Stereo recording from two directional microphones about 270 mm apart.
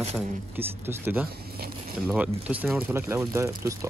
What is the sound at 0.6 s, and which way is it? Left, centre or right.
Speech, centre.